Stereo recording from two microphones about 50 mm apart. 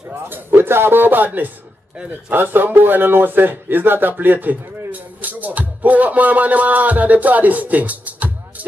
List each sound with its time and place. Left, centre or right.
0.1 s a man's voice: right
2.3 s music: right